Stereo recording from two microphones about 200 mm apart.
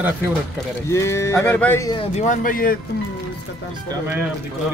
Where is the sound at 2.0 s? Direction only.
35° left (ahead or behind).